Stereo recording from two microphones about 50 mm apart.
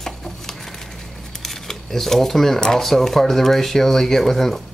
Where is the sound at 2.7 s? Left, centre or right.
Centre.